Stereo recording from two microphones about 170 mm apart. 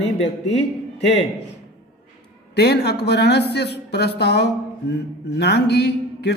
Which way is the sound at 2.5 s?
75° left (ahead or behind).